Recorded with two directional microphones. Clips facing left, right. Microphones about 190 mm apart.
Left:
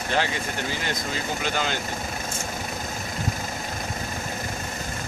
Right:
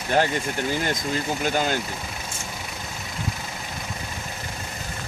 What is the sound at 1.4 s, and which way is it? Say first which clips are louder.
Speech: right 4 dB; 45° right (ahead or behind).